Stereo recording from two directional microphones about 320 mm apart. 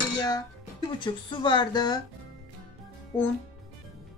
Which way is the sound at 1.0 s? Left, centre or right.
Centre.